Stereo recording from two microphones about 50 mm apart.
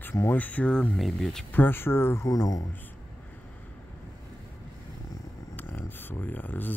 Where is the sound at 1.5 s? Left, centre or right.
Left.